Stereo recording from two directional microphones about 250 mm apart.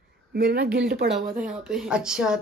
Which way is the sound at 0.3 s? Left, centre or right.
Right.